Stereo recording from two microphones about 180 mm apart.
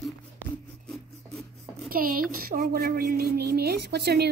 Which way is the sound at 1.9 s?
55° right (ahead or behind).